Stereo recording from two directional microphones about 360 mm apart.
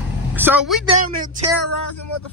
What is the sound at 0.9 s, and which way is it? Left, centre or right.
Speech, right.